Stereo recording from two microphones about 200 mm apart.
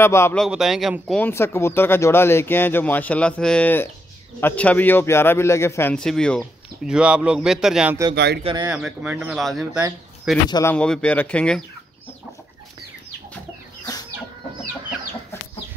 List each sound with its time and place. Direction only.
0.0 s speech: 10° left (ahead or behind)
0.4 s a man's voice: centre (ahead or behind)
1.2 s a man's voice: 10° left (ahead or behind); by 8.0 s 5° right (ahead or behind)
8.1 s speech: 60° right (ahead or behind)
8.6 s a man's voice: 10° right (ahead or behind)
10.5 s a man's voice: 10° left (ahead or behind)